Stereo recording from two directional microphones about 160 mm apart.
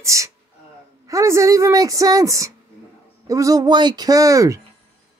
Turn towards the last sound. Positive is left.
turn(degrees=-20)  # may be behind; listen again after turning